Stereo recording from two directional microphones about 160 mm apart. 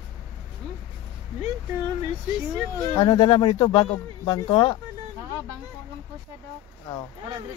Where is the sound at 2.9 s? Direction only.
30° left (ahead or behind).